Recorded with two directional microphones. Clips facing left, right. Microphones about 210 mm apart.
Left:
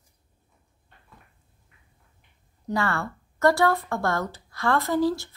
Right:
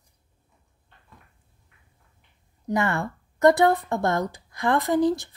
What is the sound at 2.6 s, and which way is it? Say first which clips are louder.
A woman's voice: right 2 dB; 20° right (ahead or behind).